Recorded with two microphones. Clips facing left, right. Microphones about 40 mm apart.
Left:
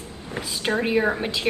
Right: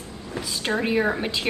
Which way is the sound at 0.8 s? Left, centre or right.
Centre.